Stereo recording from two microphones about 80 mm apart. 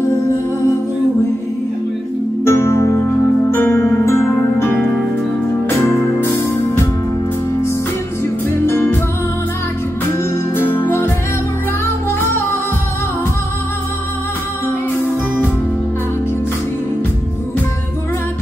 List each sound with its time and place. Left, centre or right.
2.4 s music: left
8.6 s music: left
10.1 s music: left